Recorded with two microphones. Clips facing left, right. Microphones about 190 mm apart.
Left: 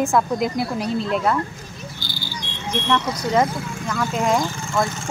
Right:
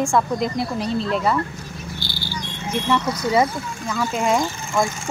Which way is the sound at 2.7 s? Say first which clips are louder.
Right 1 dB; 5° right (ahead or behind).